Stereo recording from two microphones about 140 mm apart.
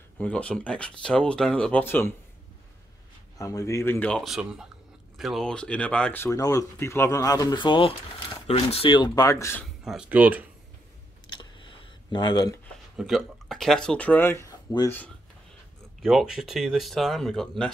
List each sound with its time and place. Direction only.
0.2 s speech: 10° left (ahead or behind)
3.3 s speech: 25° left (ahead or behind)
6.2 s speech: 25° left (ahead or behind)
9.8 s speech: 10° right (ahead or behind)
12.1 s speech: 30° left (ahead or behind)
12.9 s speech: centre (ahead or behind); by 14.5 s 15° left (ahead or behind)
16.0 s speech: centre (ahead or behind)